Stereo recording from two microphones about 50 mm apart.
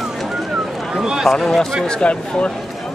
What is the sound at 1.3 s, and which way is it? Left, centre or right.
Speech, centre.